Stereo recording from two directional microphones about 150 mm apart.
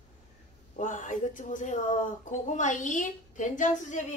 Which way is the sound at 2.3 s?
55° left (ahead or behind).